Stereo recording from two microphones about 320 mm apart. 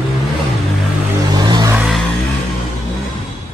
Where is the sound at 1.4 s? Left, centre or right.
Centre.